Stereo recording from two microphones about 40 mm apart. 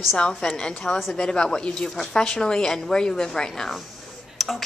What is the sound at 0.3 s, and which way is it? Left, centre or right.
A woman's voice, centre.